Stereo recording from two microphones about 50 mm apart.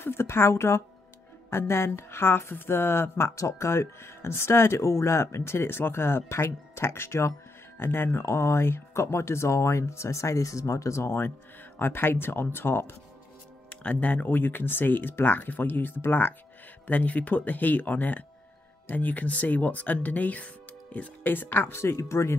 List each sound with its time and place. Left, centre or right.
0.0 s speech: left
3.3 s speech: left
7.7 s speech: left
11.8 s speech: left
13.8 s speech: left
21.3 s speech: left
21.7 s speech: left